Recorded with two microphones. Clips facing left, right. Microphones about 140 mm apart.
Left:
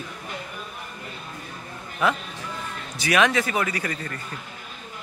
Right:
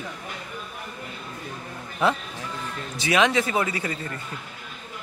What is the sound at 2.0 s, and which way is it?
A man's voice, 30° right (ahead or behind).